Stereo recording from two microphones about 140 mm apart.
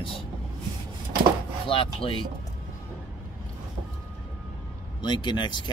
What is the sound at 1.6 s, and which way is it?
Speech, 40° left (ahead or behind).